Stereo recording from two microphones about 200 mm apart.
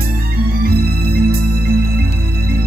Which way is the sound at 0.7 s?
50° right (ahead or behind).